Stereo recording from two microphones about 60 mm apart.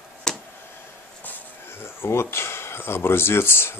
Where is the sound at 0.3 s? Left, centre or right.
Centre.